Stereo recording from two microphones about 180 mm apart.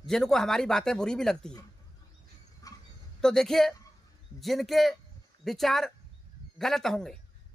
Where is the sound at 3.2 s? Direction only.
5° left (ahead or behind).